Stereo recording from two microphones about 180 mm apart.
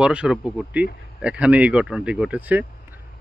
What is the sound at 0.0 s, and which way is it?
Speech, 5° right (ahead or behind).